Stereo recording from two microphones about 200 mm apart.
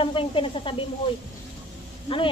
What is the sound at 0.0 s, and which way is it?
Speech, 25° left (ahead or behind).